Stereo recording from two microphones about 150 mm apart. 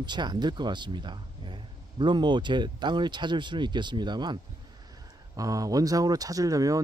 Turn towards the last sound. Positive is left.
turn(degrees=-25)  # may be behind; listen again after turning